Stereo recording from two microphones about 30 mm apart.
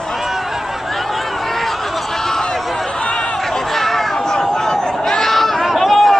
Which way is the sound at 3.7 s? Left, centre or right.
Centre.